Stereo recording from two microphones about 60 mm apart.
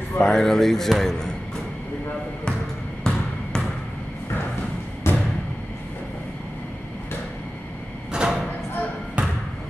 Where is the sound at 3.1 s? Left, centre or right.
Centre.